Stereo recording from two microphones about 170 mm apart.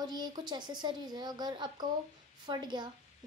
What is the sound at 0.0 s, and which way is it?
A child's voice, 25° right (ahead or behind).